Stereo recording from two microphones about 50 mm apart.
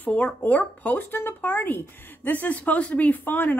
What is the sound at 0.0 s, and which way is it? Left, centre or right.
Speech, left.